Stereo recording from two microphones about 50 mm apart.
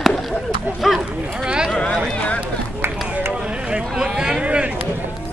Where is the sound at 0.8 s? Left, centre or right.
Centre.